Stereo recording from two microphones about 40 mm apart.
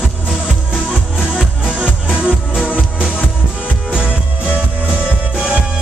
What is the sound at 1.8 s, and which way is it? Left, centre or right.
Music, right.